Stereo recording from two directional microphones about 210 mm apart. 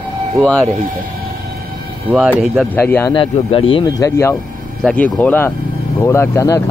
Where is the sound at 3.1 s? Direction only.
25° left (ahead or behind).